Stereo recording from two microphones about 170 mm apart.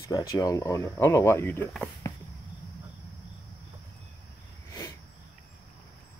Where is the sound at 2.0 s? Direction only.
20° left (ahead or behind).